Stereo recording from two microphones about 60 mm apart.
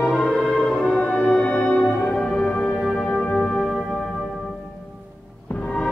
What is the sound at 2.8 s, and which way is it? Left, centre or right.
Music, centre.